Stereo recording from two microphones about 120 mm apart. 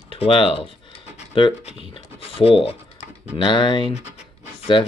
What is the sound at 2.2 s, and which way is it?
Speech, 50° left (ahead or behind).